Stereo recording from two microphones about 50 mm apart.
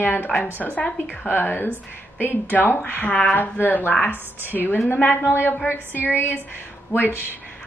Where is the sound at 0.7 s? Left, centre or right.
Left.